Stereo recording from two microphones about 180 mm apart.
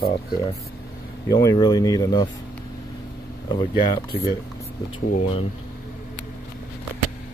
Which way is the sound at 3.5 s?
20° left (ahead or behind).